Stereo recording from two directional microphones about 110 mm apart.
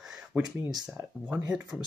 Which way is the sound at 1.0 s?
25° right (ahead or behind).